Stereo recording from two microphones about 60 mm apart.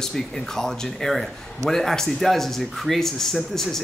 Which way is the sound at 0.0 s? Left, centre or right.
Centre.